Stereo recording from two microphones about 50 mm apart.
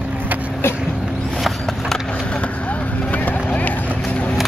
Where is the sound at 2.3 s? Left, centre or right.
Left.